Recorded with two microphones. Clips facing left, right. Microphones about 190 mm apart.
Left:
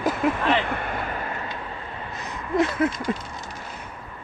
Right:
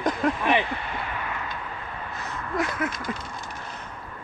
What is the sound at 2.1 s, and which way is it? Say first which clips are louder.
Speech: left 6 dB; 20° left (ahead or behind).